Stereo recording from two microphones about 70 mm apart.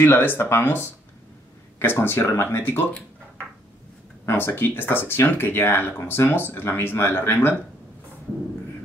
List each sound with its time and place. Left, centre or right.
0.0 s speech: left
2.6 s speech: left
4.3 s speech: left